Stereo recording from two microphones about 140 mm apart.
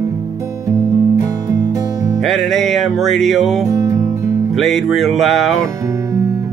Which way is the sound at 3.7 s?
25° right (ahead or behind).